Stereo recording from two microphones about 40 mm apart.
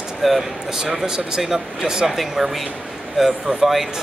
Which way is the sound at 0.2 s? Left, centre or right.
Centre.